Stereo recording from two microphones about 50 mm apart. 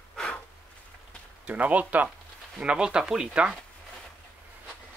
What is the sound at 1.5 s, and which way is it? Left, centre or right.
Speech, right.